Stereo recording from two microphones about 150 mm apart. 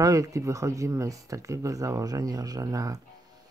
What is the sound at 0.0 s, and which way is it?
Speech, 20° right (ahead or behind).